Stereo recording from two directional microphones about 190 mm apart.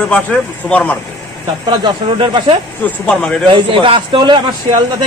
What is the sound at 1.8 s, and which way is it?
Speech, 25° right (ahead or behind).